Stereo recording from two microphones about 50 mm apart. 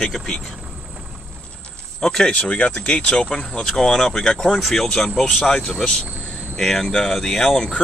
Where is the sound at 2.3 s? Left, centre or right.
Left; by 5.4 s centre.